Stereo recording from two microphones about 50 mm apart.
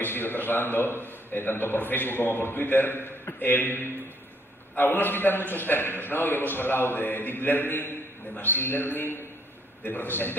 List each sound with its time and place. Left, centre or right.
0.0 s a man's voice: left